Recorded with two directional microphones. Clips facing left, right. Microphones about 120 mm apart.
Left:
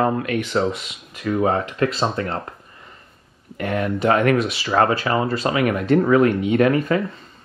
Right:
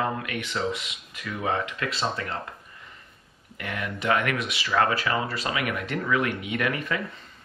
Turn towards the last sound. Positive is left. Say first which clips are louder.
# left 11 dB
turn(degrees=40)  # may be behind; listen again after turning